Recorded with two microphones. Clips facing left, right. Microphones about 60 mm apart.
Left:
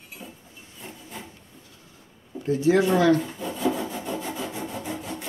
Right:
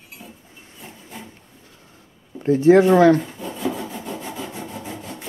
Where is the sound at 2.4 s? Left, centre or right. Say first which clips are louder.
Right 7 dB; right.